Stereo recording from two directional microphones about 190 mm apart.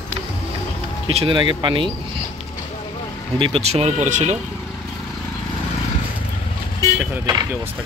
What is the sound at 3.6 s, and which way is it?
Speech, 35° right (ahead or behind).